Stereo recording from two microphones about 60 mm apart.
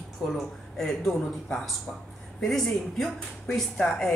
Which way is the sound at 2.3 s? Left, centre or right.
Centre.